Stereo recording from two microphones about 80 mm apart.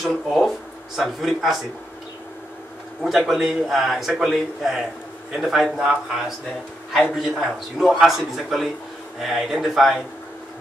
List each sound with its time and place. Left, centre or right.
0.1 s a man's voice: centre
3.0 s a man's voice: centre